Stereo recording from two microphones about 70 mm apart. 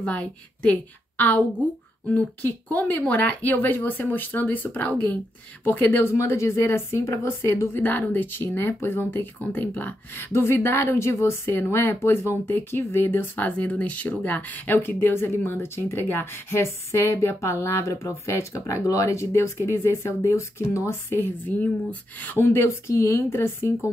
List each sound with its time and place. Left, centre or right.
0.0 s speech: centre; by 7.8 s left
7.8 s speech: left
13.5 s speech: left